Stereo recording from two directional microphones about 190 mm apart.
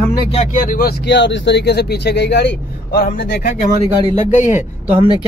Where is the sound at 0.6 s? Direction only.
50° left (ahead or behind).